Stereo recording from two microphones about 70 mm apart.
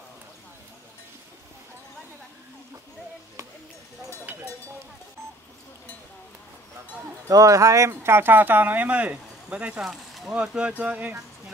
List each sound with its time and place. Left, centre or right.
7.2 s speech: right
7.9 s speech: right; by 9.8 s centre
9.8 s a sound: centre
10.3 s speech: centre